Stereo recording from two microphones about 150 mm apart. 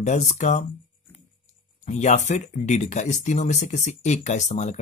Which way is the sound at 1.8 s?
50° left (ahead or behind).